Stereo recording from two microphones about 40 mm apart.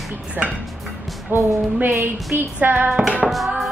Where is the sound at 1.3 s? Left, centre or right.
Right.